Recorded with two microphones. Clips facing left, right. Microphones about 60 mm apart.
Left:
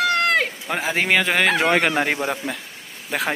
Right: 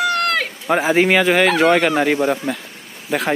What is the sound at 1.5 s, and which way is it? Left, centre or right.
Speech, centre.